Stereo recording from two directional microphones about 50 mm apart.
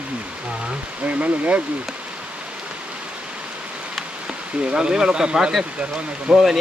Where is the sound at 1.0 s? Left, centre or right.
Right.